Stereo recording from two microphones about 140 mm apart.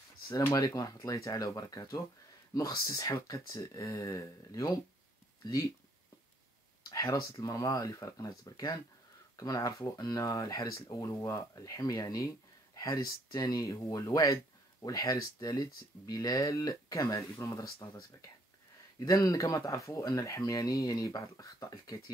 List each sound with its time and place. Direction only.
0.3 s speech: 25° left (ahead or behind)
6.8 s a sound: 25° left (ahead or behind)
7.3 s speech: 25° left (ahead or behind)